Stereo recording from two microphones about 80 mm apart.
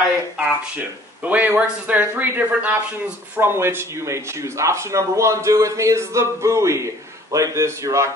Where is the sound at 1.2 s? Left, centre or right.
Right.